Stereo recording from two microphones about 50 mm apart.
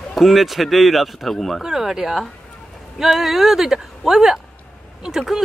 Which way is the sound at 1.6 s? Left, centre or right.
Centre.